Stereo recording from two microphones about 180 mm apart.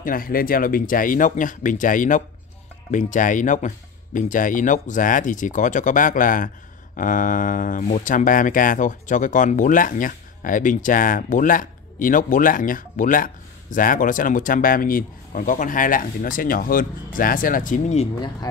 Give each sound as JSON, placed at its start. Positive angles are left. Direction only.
{"t": 0.0, "sound": "speech", "side_deg": 50}